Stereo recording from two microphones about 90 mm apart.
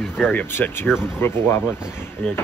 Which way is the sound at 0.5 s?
25° left (ahead or behind).